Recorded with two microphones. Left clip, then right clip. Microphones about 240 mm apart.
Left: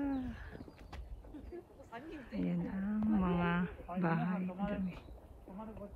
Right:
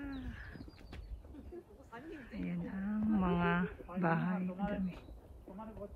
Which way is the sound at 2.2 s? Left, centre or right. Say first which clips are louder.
Left 6 dB; centre.